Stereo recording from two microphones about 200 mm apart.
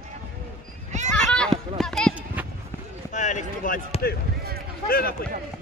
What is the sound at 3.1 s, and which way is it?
Speech, 35° left (ahead or behind).